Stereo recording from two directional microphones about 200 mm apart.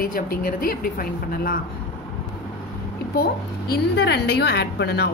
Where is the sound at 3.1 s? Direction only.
50° left (ahead or behind).